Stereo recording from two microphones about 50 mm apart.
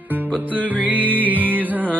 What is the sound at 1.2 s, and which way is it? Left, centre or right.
Music, left.